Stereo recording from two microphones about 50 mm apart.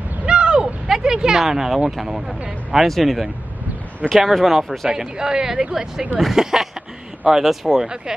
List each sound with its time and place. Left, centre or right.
0.2 s a sound: centre
1.9 s speech: centre
4.8 s speech: centre